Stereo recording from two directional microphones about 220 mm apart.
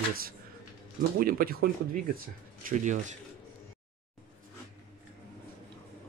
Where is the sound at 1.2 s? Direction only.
40° right (ahead or behind).